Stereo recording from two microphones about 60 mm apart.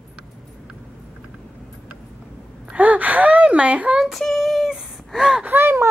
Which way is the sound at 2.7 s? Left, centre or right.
Right.